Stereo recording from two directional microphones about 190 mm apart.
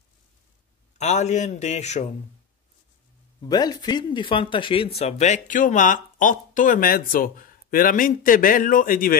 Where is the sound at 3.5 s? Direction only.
20° left (ahead or behind).